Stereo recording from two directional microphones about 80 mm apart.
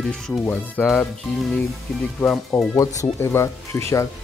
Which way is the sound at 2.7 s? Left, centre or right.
Left.